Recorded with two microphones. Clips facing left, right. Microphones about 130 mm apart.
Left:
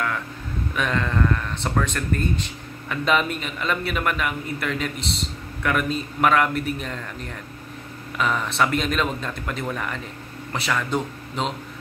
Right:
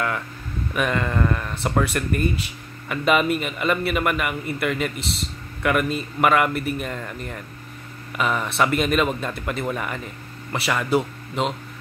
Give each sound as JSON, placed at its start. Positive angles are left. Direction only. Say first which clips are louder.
{"t": 0.7, "sound": "speech", "louder": "right 1 dB", "side_deg": -5}